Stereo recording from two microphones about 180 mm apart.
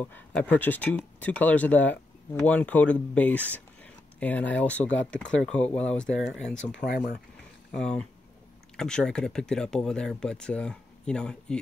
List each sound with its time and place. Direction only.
0.0 s speech: 10° left (ahead or behind)
6.7 s speech: 65° left (ahead or behind)
7.7 s speech: 5° left (ahead or behind)